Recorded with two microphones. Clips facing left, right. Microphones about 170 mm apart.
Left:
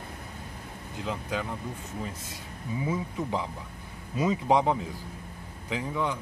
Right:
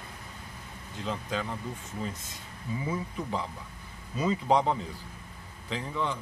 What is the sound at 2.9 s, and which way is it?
A man's voice, 15° left (ahead or behind).